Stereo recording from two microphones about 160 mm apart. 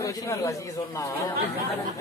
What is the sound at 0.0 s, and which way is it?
A man's voice, 20° left (ahead or behind).